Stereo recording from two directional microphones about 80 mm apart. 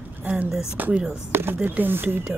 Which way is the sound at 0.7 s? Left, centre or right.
Right.